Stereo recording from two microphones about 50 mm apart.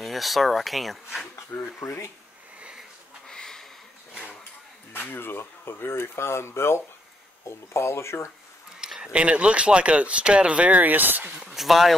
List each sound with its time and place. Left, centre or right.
0.0 s speech: centre
1.5 s speech: left
2.6 s sniff: centre
3.3 s a sound: centre
5.1 s speech: left
8.8 s speech: centre; by 11.3 s right
11.4 s speech: centre